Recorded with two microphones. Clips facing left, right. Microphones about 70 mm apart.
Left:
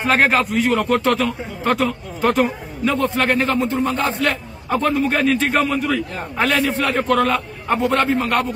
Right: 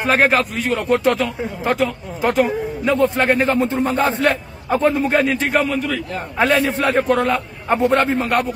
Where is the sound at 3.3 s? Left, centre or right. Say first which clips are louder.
Right 1 dB; right.